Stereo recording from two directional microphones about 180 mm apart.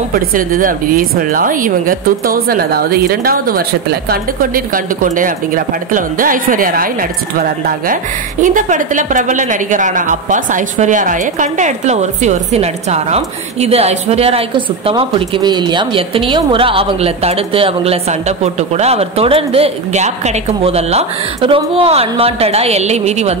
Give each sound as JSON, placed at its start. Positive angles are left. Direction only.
{"t": 0.1, "sound": "a woman's voice", "side_deg": -50}